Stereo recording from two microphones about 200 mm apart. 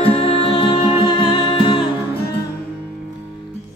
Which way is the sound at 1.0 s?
25° left (ahead or behind).